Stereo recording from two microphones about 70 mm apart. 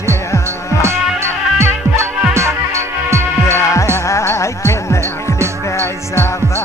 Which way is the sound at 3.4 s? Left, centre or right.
Left.